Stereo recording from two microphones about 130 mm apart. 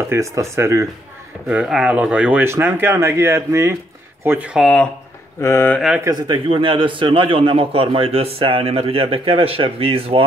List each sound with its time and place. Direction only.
0.1 s speech: 25° right (ahead or behind)
1.5 s speech: 5° right (ahead or behind)
4.6 s speech: 5° left (ahead or behind)
5.4 s mantra: 20° left (ahead or behind)
6.1 s a man's voice: 35° right (ahead or behind)